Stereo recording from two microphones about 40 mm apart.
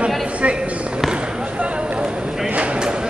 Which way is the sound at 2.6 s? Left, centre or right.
Right.